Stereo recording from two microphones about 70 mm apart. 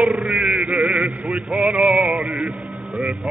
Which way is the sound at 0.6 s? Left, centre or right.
Centre.